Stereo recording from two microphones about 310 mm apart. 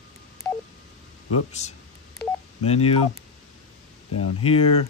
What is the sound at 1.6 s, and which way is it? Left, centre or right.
Speech, left.